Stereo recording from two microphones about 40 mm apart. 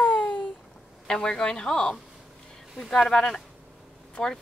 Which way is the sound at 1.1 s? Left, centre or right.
Centre.